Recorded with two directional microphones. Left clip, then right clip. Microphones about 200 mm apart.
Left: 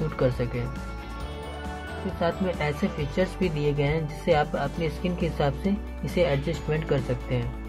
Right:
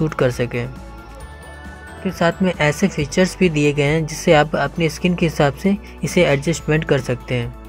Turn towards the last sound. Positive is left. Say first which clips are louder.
# right 7 dB
turn(degrees=-35)  # may be behind; listen again after turning